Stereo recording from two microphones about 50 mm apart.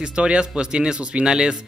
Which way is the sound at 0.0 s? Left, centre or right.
Right.